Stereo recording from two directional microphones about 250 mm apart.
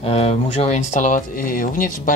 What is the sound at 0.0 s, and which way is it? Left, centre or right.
Speech, left.